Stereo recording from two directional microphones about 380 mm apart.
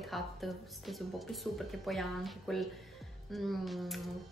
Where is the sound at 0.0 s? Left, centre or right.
Centre.